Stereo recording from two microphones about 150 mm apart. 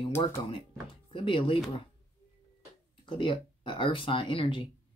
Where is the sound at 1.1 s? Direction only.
35° left (ahead or behind).